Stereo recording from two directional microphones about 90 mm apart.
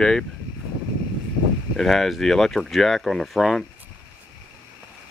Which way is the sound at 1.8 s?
5° left (ahead or behind).